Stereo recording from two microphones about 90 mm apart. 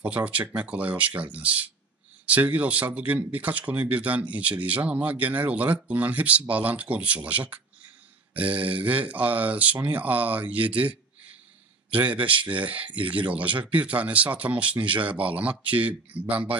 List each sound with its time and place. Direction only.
0.0 s speech: 15° right (ahead or behind)